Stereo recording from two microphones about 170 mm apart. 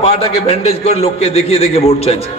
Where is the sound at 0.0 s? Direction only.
35° left (ahead or behind).